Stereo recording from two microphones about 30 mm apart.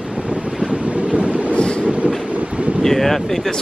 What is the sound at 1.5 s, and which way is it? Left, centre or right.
Train, left.